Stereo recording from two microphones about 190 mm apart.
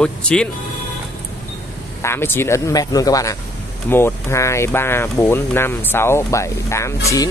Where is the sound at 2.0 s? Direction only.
15° left (ahead or behind).